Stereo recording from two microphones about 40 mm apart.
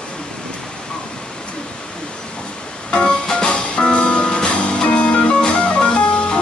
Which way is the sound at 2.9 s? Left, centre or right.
Centre.